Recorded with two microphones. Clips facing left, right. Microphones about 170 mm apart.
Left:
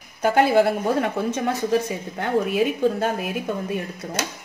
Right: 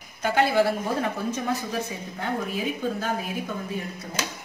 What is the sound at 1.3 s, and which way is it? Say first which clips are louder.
A woman's voice: left 6 dB; 75° left (ahead or behind).